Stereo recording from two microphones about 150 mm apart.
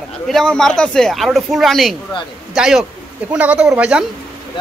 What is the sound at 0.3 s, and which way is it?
Speech, 5° left (ahead or behind).